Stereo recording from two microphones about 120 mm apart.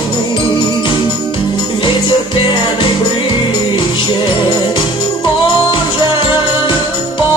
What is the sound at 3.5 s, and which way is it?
Music, 40° left (ahead or behind).